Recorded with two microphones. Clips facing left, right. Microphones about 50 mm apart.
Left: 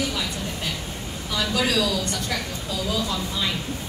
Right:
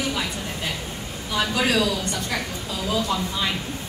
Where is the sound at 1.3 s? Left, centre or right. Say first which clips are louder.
Right 2 dB; right.